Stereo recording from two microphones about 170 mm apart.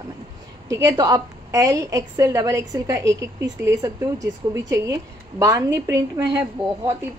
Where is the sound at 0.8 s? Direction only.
20° right (ahead or behind).